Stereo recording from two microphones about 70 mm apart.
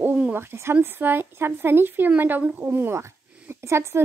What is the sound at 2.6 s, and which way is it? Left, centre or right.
A woman's voice, right.